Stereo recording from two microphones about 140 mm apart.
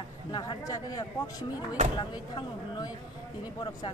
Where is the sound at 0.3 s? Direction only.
30° left (ahead or behind).